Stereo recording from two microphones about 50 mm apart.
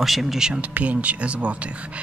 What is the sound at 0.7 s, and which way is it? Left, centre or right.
Speech, right.